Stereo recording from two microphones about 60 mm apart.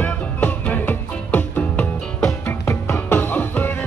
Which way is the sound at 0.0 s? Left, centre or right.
Left.